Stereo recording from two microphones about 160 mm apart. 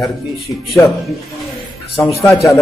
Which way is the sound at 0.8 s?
15° left (ahead or behind).